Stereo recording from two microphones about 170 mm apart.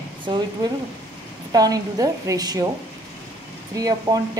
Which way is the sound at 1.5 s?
20° right (ahead or behind).